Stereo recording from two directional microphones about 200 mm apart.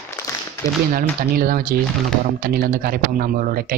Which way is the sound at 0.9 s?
45° right (ahead or behind).